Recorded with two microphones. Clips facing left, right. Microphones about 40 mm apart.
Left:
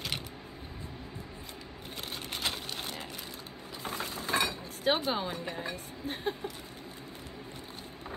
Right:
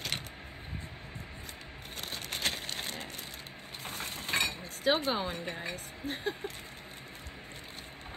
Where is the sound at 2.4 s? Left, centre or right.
Right.